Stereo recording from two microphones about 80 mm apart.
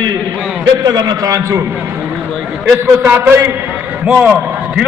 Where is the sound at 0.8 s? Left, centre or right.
Right.